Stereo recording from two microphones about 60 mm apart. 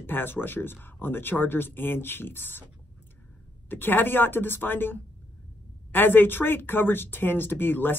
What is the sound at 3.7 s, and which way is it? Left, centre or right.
Speech, left.